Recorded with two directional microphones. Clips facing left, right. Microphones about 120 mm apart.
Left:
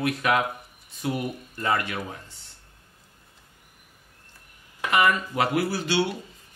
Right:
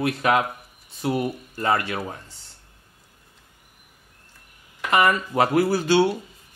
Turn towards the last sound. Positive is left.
turn(degrees=-45)  # may be behind; listen again after turning